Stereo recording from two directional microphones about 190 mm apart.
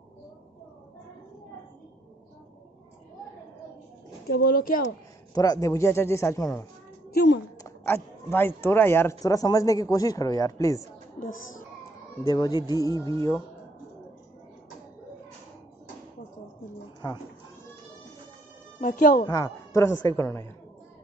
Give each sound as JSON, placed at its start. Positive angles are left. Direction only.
{"t": 4.3, "sound": "speech", "side_deg": 50}
{"t": 4.8, "sound": "speech", "side_deg": 20}
{"t": 7.1, "sound": "a sound", "side_deg": 60}
{"t": 7.6, "sound": "speech", "side_deg": 10}
{"t": 12.3, "sound": "speech", "side_deg": 20}
{"t": 17.0, "sound": "speech", "side_deg": 20}
{"t": 18.8, "sound": "speech", "side_deg": 45}
{"t": 19.2, "sound": "speech", "side_deg": 20}